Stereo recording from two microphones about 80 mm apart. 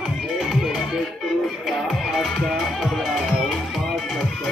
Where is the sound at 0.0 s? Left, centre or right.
Centre.